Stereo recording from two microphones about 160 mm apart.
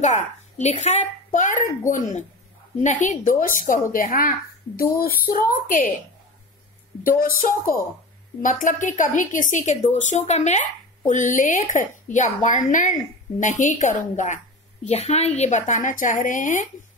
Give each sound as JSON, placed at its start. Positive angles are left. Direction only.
{"t": 0.0, "sound": "a child's voice", "side_deg": 45}
{"t": 7.0, "sound": "a woman's voice", "side_deg": 60}